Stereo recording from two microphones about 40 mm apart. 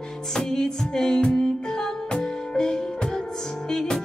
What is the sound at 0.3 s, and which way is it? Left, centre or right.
Music, centre.